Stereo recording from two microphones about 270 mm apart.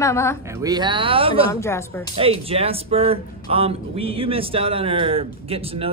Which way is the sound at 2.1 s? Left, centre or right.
Right.